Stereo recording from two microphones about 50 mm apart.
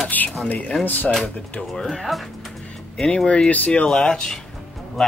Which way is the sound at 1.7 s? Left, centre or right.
Centre.